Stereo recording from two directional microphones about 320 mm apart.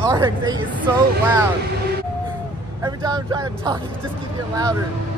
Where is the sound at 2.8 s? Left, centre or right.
Centre.